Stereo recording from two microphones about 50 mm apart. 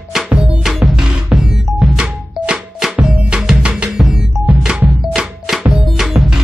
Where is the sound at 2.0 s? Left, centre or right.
Centre.